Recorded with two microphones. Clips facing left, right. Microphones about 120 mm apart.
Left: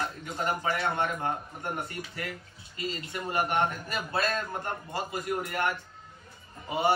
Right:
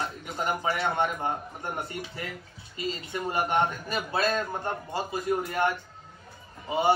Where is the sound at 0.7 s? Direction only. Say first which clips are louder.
Right 3 dB; 20° right (ahead or behind).